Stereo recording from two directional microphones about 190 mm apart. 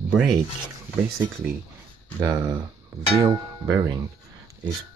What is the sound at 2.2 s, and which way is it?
Speech, 15° right (ahead or behind).